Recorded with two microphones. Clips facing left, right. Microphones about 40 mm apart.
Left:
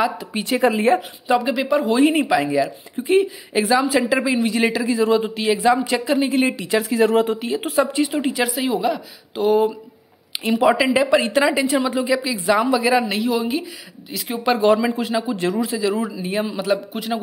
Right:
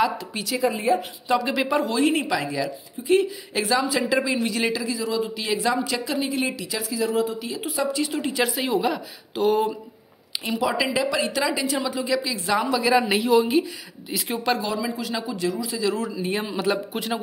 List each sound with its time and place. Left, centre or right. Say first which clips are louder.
0.6 s speech: left 6 dB; left
1.4 s speech: left 3 dB; centre
2.0 s a woman's voice: left 5 dB; centre
4.6 s speech: left 7 dB; left
5.4 s a woman's voice: left 6 dB; left
6.7 s speech: left 11 dB; left
7.3 s speech: left 7 dB; left
8.0 s speech: left 5 dB; centre
8.3 s speech: left 3 dB; centre
10.6 s a woman's voice: left 7 dB; left; by 13.0 s centre
13.0 s speech: right 2 dB; centre
14.6 s speech: left 10 dB; left
15.7 s a woman's voice: left 4 dB; centre
16.2 s speech: left 3 dB; centre